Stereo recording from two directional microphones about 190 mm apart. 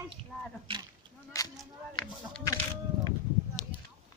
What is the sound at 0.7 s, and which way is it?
Speech, 25° right (ahead or behind).